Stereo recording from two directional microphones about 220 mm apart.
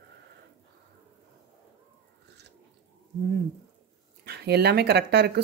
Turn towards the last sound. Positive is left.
turn(degrees=-50)  # may be behind; listen again after turning